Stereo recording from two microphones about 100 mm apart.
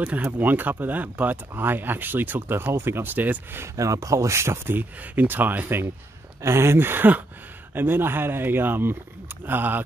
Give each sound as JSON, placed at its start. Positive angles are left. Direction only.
{"t": 0.0, "sound": "speech", "side_deg": -20}
{"t": 3.7, "sound": "speech", "side_deg": -35}